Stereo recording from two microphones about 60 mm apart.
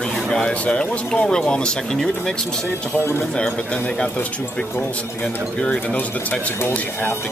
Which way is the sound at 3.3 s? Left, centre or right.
Centre.